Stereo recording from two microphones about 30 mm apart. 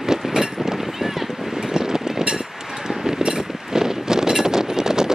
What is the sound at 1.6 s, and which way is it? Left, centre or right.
Vehicle, right.